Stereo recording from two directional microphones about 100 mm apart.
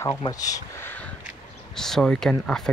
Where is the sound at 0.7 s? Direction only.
20° left (ahead or behind).